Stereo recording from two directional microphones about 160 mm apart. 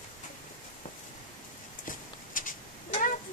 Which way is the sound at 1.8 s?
55° left (ahead or behind).